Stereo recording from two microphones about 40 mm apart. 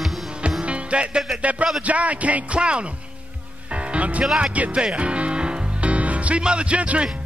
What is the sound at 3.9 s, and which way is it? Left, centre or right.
Music, right.